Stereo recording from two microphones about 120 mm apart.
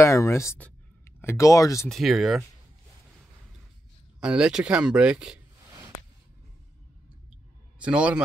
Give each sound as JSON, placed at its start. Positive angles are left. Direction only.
{"t": 0.0, "sound": "speech", "side_deg": 25}
{"t": 0.6, "sound": "a sound", "side_deg": 20}
{"t": 1.9, "sound": "speech", "side_deg": 0}
{"t": 4.2, "sound": "speech", "side_deg": -5}
{"t": 7.8, "sound": "speech", "side_deg": -10}